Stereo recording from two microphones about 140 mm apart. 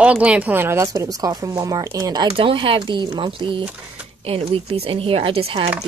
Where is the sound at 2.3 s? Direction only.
40° right (ahead or behind).